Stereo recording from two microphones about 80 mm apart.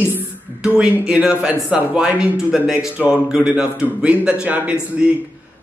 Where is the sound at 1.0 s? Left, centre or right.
Centre.